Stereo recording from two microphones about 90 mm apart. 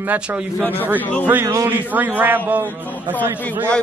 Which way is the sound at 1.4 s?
30° right (ahead or behind).